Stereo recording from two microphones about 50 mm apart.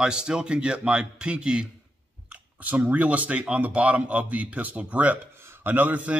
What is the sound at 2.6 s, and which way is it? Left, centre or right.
Speech, right.